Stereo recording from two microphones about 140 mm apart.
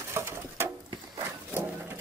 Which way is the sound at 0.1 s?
20° right (ahead or behind).